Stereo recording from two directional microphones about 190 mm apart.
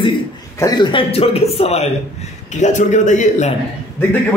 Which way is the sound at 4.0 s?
10° left (ahead or behind).